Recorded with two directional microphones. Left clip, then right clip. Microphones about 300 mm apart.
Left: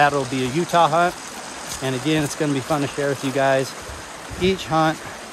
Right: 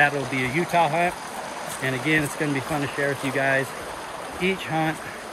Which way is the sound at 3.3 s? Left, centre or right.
Centre.